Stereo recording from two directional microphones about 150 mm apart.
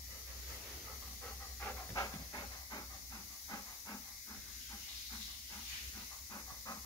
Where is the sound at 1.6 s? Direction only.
25° left (ahead or behind).